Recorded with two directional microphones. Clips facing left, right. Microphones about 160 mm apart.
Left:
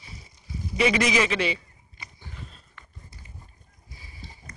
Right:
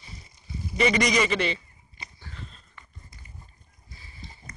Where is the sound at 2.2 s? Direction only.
10° left (ahead or behind).